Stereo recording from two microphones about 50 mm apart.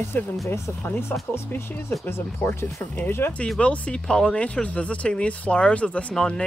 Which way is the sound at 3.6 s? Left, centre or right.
Left.